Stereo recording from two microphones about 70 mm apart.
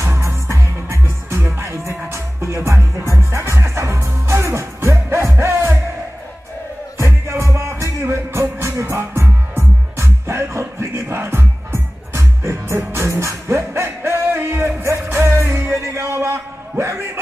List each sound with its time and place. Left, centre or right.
0.0 s music: right
7.0 s music: right
15.8 s a sound: right